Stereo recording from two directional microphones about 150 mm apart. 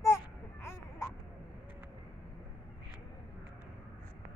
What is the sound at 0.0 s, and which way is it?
Baby cry, 15° left (ahead or behind).